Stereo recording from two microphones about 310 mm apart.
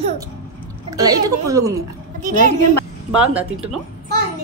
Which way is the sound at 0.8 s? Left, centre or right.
Centre.